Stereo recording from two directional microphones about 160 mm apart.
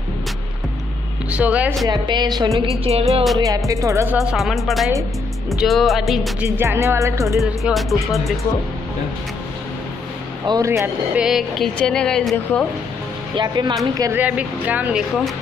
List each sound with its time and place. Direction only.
1.3 s speech: 10° right (ahead or behind)
1.9 s music: 25° right (ahead or behind)
2.8 s music: 40° right (ahead or behind)
3.3 s music: 20° right (ahead or behind)
4.3 s a woman's voice: centre (ahead or behind)
6.4 s speech: 15° right (ahead or behind)
7.3 s a woman's voice: centre (ahead or behind)
10.4 s music: 25° right (ahead or behind)
11.1 s a woman's voice: centre (ahead or behind)
13.4 s music: 30° right (ahead or behind)
14.2 s speech: 10° right (ahead or behind)